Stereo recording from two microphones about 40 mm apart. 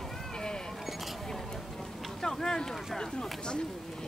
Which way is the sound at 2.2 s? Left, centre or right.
Centre.